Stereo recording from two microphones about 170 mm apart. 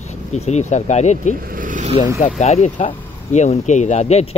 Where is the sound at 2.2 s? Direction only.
45° left (ahead or behind).